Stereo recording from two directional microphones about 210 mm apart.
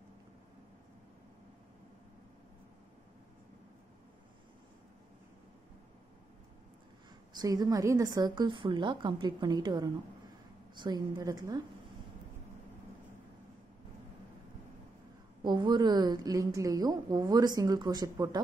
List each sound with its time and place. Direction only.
7.3 s a woman's voice: 20° right (ahead or behind)
15.4 s a woman's voice: 20° right (ahead or behind)